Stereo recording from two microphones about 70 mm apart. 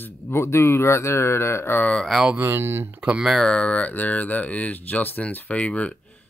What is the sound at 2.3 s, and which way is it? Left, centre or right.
Speech, right.